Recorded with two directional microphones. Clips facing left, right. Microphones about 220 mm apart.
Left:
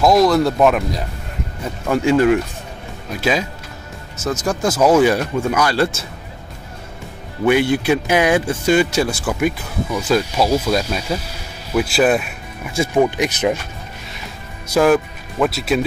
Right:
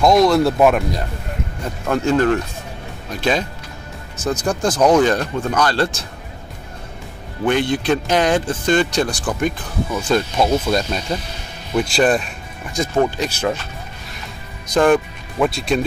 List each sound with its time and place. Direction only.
0.0 s speech: centre (ahead or behind)
1.9 s speech: 10° left (ahead or behind)
4.5 s speech: 5° left (ahead or behind)
7.4 s speech: 10° left (ahead or behind)
14.7 s speech: 5° left (ahead or behind)